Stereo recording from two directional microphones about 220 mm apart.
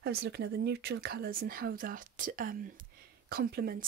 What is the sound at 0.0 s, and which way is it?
Speech, 45° right (ahead or behind).